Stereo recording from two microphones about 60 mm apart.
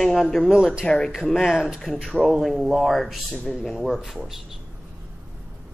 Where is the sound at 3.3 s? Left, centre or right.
Centre.